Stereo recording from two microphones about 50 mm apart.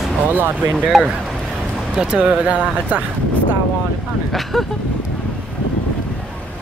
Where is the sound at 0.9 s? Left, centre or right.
Centre.